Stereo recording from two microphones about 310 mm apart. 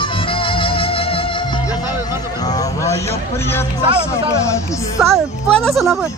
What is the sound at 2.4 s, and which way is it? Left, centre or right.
Vehicle, centre.